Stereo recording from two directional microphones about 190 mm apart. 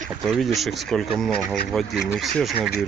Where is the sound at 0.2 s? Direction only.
Centre (ahead or behind).